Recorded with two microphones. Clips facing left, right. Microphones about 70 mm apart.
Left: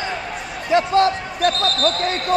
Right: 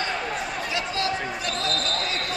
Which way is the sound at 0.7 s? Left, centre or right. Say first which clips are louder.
Left 14 dB; left.